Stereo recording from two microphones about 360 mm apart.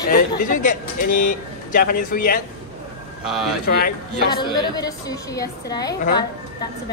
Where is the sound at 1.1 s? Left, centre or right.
Left.